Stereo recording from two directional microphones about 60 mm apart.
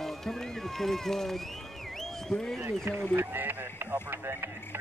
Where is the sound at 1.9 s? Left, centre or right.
Centre.